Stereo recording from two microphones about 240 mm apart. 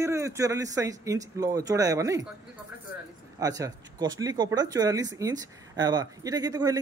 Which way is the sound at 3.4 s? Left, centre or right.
Centre.